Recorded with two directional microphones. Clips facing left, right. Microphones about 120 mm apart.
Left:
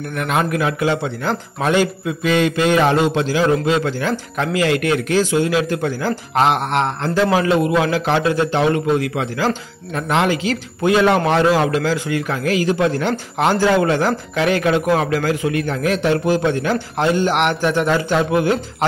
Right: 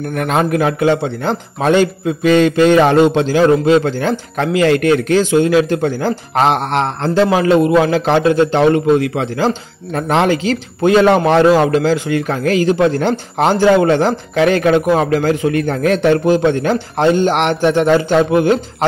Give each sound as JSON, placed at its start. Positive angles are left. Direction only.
{"t": 0.1, "sound": "a man's voice", "side_deg": -35}
{"t": 16.3, "sound": "a man's voice", "side_deg": -25}